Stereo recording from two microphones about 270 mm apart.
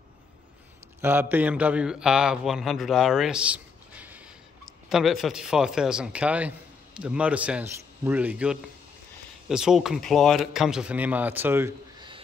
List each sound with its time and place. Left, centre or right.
1.0 s a man's voice: centre